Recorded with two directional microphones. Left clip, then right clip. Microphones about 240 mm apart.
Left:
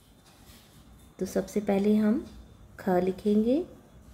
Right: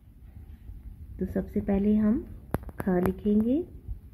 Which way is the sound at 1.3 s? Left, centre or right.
Right.